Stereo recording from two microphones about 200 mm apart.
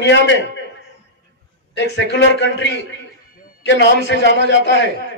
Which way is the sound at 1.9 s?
60° left (ahead or behind).